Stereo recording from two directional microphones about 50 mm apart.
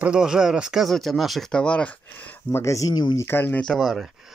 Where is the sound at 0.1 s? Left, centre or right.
Centre.